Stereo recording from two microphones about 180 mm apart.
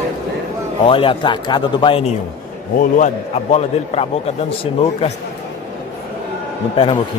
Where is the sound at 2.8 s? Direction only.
40° left (ahead or behind).